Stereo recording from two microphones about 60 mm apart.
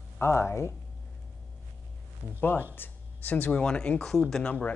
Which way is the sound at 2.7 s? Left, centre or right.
Left.